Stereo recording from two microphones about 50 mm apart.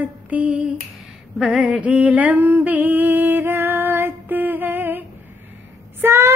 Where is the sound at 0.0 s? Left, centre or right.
Right.